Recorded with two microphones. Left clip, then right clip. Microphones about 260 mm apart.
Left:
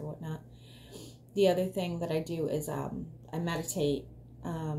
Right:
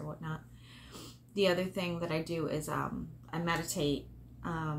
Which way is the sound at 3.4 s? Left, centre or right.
Centre.